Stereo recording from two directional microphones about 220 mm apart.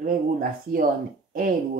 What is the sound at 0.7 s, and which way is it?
Speech, 40° right (ahead or behind).